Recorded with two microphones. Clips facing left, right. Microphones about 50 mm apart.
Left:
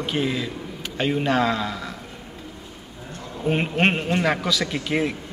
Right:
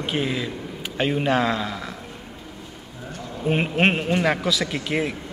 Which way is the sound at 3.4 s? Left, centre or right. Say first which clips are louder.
Even; centre.